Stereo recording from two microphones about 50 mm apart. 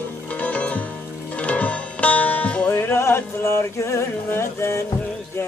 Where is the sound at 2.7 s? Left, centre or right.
Left.